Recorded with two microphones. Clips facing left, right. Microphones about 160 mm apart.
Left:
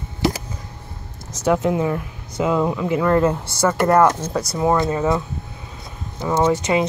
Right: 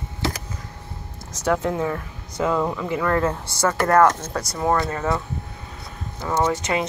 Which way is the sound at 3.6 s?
5° left (ahead or behind).